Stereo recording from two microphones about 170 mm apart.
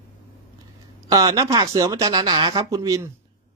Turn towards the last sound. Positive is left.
turn(degrees=-20)  # may be behind; listen again after turning